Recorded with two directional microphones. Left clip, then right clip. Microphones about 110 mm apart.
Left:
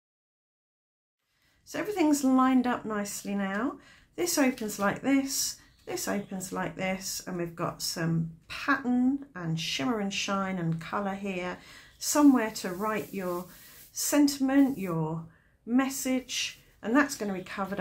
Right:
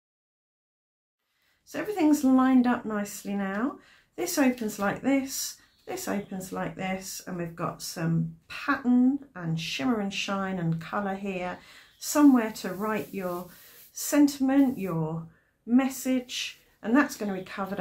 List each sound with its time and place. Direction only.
1.7 s speech: 25° left (ahead or behind)